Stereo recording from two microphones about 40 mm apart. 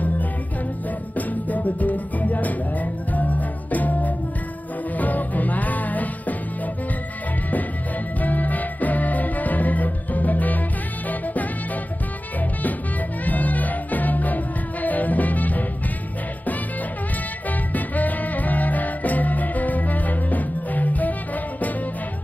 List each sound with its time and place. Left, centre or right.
1.1 s music: left
8.2 s music: left
13.2 s music: left
17.5 s music: left